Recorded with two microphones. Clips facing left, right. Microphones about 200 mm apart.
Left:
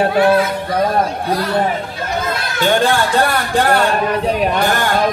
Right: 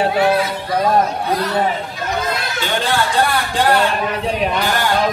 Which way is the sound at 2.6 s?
50° left (ahead or behind).